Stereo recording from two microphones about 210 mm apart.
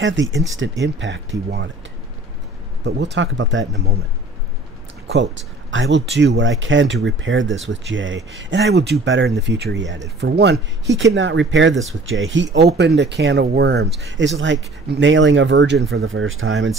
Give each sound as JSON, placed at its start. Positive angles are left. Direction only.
{"t": 0.0, "sound": "speech", "side_deg": -60}
{"t": 2.8, "sound": "speech", "side_deg": -55}
{"t": 5.1, "sound": "speech", "side_deg": -60}
{"t": 11.0, "sound": "speech", "side_deg": -65}
{"t": 15.9, "sound": "speech", "side_deg": -70}